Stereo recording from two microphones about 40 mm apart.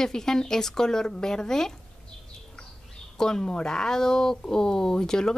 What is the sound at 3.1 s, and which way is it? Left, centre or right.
A woman's voice, centre.